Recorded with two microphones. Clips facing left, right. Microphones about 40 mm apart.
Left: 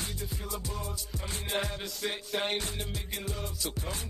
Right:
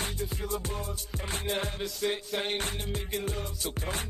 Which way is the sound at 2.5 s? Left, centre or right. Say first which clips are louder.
Right 2 dB; right.